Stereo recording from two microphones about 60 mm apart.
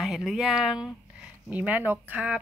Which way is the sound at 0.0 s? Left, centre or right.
Centre.